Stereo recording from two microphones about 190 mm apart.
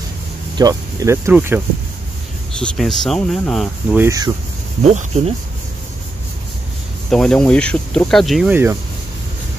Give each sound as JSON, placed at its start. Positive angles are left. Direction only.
{"t": 0.6, "sound": "speech", "side_deg": -20}
{"t": 2.6, "sound": "speech", "side_deg": 5}
{"t": 4.0, "sound": "speech", "side_deg": -20}
{"t": 4.8, "sound": "speech", "side_deg": -35}
{"t": 7.1, "sound": "speech", "side_deg": 5}